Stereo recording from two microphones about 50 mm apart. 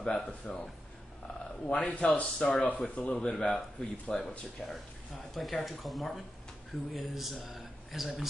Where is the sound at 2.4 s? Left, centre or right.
Centre.